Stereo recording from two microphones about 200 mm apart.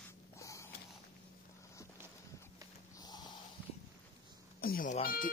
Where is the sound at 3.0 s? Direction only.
20° left (ahead or behind).